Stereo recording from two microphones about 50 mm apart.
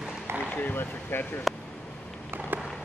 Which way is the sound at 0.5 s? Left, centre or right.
Left.